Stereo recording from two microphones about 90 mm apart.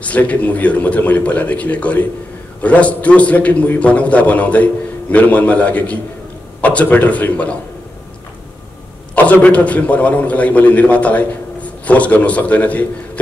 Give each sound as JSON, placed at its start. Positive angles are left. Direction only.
{"t": 0.0, "sound": "a man's voice", "side_deg": 15}
{"t": 9.1, "sound": "a man's voice", "side_deg": 15}